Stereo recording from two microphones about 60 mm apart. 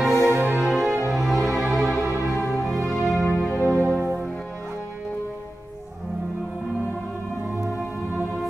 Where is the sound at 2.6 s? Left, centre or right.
Centre.